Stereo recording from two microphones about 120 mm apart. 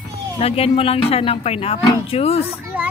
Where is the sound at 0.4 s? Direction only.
55° left (ahead or behind).